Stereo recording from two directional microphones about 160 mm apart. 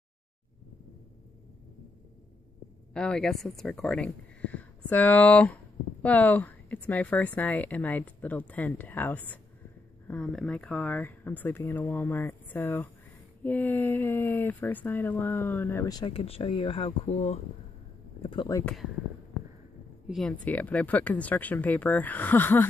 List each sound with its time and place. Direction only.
2.9 s a woman's voice: 5° left (ahead or behind); by 16.1 s 20° left (ahead or behind)
16.1 s speech: 35° left (ahead or behind)
20.1 s a woman's voice: centre (ahead or behind)